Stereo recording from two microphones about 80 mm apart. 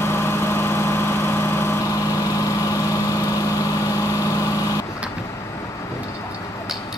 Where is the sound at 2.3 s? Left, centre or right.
Left.